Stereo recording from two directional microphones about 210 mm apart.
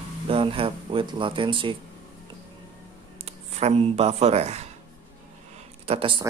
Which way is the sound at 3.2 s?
30° right (ahead or behind).